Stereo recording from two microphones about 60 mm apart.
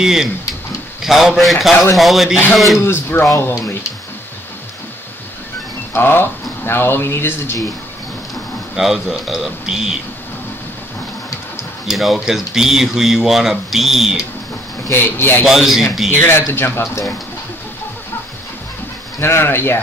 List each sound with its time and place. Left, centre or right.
0.0 s a man's voice: centre
2.8 s speech: left
5.9 s speech: left
8.7 s speech: centre
11.9 s speech: centre
14.9 s speech: left
15.4 s a man's voice: centre
16.1 s speech: left
19.2 s speech: left